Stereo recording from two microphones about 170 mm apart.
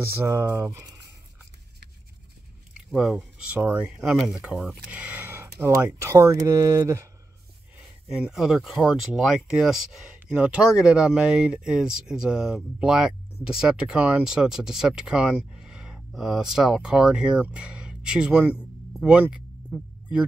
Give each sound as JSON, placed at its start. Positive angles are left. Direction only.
{"t": 0.3, "sound": "speech", "side_deg": -20}
{"t": 2.7, "sound": "speech", "side_deg": -5}
{"t": 8.2, "sound": "speech", "side_deg": -5}